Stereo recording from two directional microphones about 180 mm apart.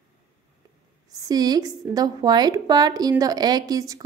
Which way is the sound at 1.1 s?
20° right (ahead or behind).